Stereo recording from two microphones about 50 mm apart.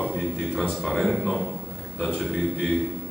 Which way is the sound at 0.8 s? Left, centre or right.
Centre.